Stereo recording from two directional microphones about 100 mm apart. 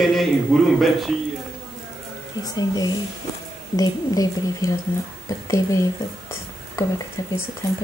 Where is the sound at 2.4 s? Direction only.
40° left (ahead or behind).